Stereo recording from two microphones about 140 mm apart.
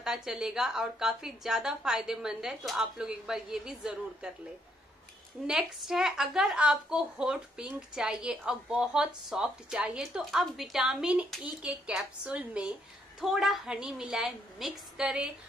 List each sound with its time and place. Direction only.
0.0 s a woman's voice: 5° right (ahead or behind)
5.5 s a woman's voice: 5° right (ahead or behind)